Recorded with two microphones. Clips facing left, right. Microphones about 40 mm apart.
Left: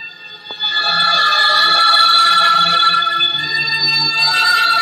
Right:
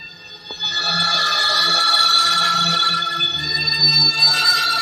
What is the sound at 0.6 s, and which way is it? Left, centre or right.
Music, left.